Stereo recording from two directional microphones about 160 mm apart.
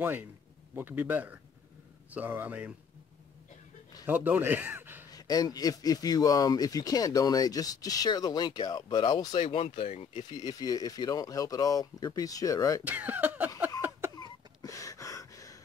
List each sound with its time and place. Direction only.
0.0 s speech: 10° right (ahead or behind)
4.0 s a man's voice: 10° right (ahead or behind)
5.1 s speech: 25° left (ahead or behind); by 10.2 s 40° left (ahead or behind)
10.3 s speech: 25° left (ahead or behind)
12.8 s speech: 10° right (ahead or behind)
13.7 s cough: 10° right (ahead or behind)
14.1 s a sound: 25° left (ahead or behind)